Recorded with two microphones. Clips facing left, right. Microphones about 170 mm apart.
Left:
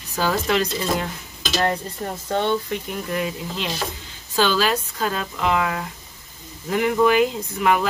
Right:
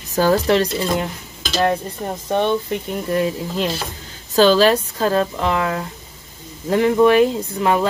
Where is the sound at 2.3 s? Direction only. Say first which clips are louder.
Right 3 dB; 20° right (ahead or behind).